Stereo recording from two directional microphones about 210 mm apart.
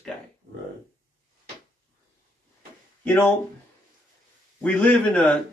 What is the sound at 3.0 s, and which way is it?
Speech, 10° left (ahead or behind).